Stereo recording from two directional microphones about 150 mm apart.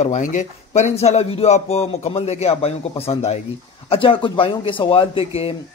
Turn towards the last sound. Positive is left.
turn(degrees=40)  # may be behind; listen again after turning